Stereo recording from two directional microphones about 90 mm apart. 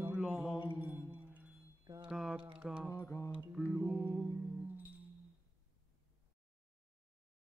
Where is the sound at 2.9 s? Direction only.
30° left (ahead or behind).